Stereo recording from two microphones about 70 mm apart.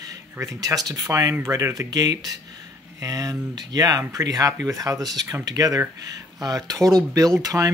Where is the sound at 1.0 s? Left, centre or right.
Right.